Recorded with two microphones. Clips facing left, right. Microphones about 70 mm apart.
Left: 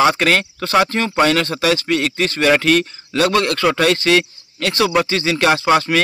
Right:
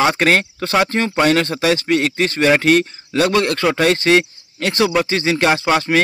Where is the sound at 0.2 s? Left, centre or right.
Right.